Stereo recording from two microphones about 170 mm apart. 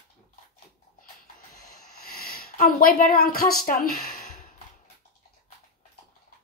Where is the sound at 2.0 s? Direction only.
60° left (ahead or behind).